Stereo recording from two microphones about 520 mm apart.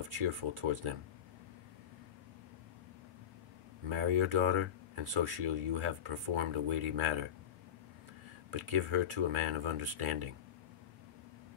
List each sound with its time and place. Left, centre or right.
0.1 s speech: right
3.9 s speech: right
8.5 s speech: right